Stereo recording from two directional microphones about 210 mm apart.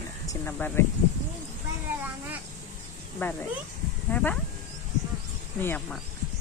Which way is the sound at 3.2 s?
10° left (ahead or behind).